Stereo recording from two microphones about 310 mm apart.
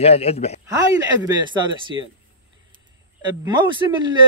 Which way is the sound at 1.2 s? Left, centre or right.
Centre.